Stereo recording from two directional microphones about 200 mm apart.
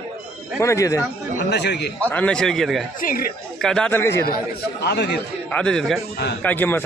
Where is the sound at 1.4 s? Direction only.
55° left (ahead or behind).